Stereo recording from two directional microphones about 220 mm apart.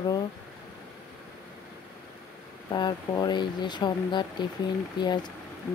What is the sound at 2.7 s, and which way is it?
Speech, 20° left (ahead or behind).